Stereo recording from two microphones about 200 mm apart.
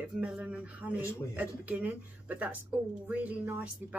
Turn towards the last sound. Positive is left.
turn(degrees=-5)  # may be behind; listen again after turning